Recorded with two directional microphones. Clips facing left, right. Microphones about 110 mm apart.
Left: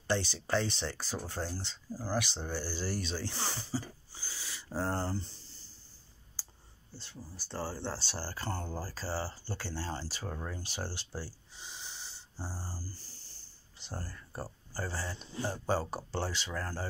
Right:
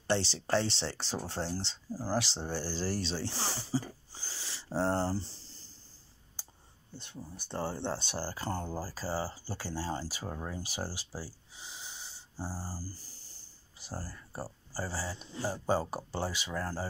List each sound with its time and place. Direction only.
0.3 s speech: 20° right (ahead or behind)
7.0 s speech: 20° right (ahead or behind)